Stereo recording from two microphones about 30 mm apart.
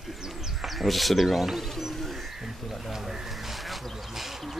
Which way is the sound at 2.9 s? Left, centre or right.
Centre.